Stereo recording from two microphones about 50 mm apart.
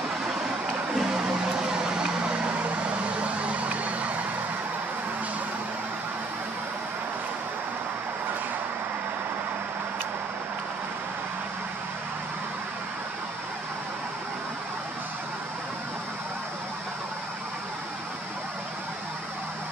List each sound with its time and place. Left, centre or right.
0.9 s music: centre
3.2 s vehicle: right